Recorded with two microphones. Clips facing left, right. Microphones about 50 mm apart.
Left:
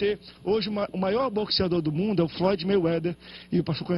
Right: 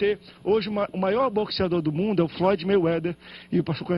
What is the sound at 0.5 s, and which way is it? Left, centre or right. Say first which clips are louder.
A man's voice: right 3 dB; centre.